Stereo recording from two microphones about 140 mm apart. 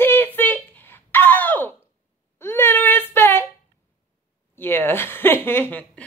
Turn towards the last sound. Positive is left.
turn(degrees=15)  # may be behind; listen again after turning